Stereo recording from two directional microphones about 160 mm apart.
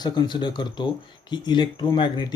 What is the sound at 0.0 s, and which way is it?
Speech, 25° left (ahead or behind).